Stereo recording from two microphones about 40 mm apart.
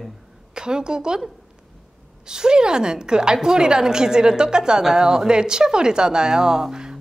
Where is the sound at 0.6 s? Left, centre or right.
Centre.